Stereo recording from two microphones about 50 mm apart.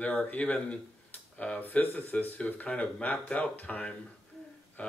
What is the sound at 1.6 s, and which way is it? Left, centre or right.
Speech, left.